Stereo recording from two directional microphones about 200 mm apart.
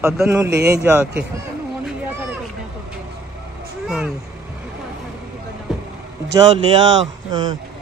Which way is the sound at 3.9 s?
5° right (ahead or behind).